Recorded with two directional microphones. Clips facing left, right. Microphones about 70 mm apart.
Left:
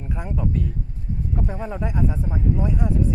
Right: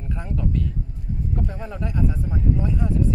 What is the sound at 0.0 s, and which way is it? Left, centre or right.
A man's voice, centre.